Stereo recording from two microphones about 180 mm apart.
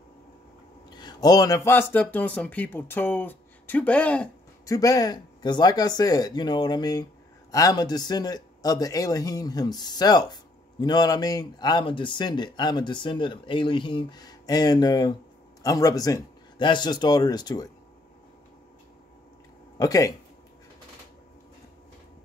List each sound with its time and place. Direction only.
0.8 s speech: 25° left (ahead or behind); by 4.3 s 5° left (ahead or behind)
4.6 s speech: 20° left (ahead or behind)
19.8 s speech: 20° left (ahead or behind)